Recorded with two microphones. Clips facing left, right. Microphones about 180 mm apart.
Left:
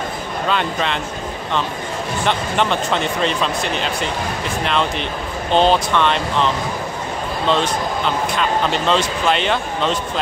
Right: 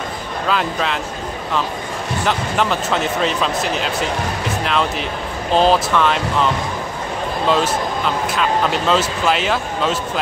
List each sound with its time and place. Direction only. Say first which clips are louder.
0.5 s speech: right 1 dB; centre (ahead or behind)
2.2 s speech: even; centre (ahead or behind)